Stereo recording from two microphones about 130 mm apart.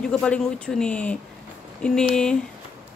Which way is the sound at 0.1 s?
5° left (ahead or behind).